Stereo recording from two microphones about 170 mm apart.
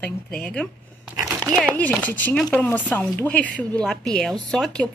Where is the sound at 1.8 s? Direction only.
10° left (ahead or behind).